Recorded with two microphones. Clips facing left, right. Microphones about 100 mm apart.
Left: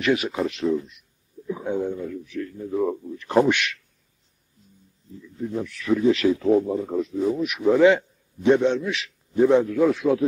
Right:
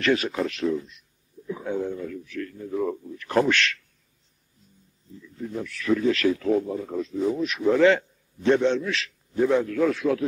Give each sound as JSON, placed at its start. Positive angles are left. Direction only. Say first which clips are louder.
{"t": 0.0, "sound": "a man's voice", "louder": "left 1 dB", "side_deg": 15}
{"t": 5.4, "sound": "a man's voice", "louder": "left 3 dB", "side_deg": 15}
{"t": 7.2, "sound": "a man's voice", "louder": "right 1 dB", "side_deg": 5}